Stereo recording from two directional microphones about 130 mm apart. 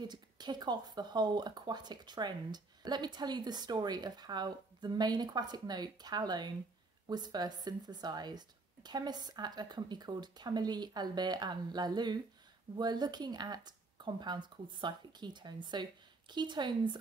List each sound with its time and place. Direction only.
0.0 s speech: 35° right (ahead or behind)